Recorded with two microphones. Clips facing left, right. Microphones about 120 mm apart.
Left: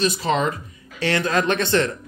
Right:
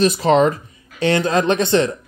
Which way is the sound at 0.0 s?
45° right (ahead or behind).